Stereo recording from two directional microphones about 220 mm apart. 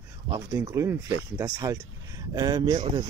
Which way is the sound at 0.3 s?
15° right (ahead or behind).